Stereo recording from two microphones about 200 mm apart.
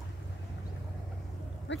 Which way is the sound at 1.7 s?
65° left (ahead or behind).